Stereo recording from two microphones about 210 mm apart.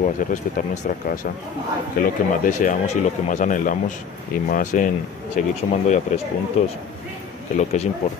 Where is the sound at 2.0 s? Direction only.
40° left (ahead or behind).